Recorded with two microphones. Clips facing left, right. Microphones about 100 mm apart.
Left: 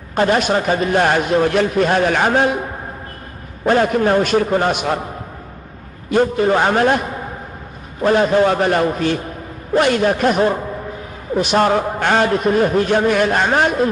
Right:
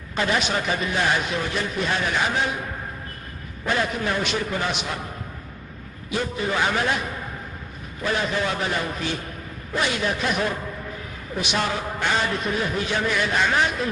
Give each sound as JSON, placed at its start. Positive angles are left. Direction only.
{"t": 0.1, "sound": "speech", "side_deg": 45}
{"t": 3.6, "sound": "speech", "side_deg": 45}
{"t": 6.0, "sound": "speech", "side_deg": 50}